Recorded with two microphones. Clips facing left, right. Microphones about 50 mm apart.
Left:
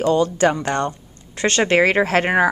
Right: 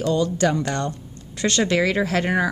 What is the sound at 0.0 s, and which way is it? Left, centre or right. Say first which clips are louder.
A woman's voice: left 4 dB; left.